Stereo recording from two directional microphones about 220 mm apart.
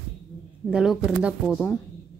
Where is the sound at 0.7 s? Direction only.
Centre (ahead or behind).